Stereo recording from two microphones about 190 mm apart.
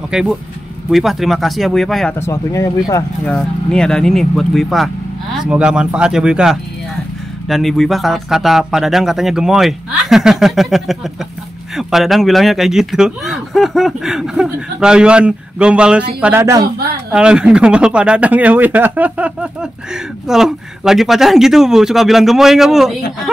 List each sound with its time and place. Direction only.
0.1 s speech: 5° right (ahead or behind)
2.1 s speech: 15° left (ahead or behind)
3.3 s speech: 5° left (ahead or behind); by 16.6 s 15° right (ahead or behind)
16.6 s a woman's voice: 55° right (ahead or behind)
17.1 s speech: 5° right (ahead or behind)